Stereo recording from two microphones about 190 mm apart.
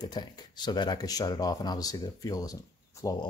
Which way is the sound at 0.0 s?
20° left (ahead or behind).